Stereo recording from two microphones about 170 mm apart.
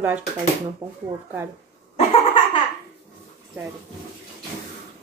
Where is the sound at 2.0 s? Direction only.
30° left (ahead or behind).